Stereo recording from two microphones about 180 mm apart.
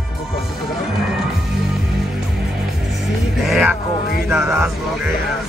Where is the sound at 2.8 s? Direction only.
Centre (ahead or behind).